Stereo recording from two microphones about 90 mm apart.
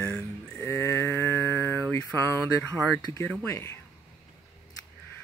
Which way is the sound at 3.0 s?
50° left (ahead or behind).